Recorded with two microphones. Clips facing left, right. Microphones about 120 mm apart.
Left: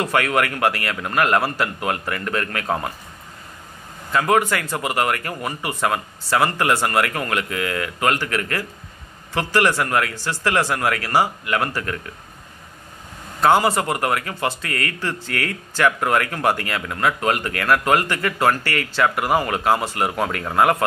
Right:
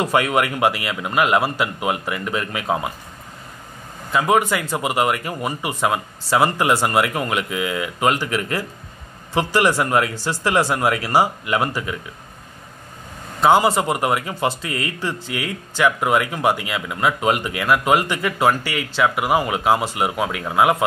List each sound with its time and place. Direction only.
0.0 s speech: 20° right (ahead or behind)
4.1 s a man's voice: 10° right (ahead or behind)
13.4 s speech: 10° right (ahead or behind)